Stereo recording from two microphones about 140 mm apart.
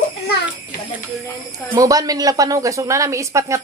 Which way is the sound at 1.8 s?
25° right (ahead or behind).